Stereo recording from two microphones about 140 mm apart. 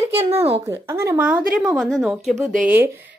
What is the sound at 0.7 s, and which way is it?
A woman's voice, 20° right (ahead or behind).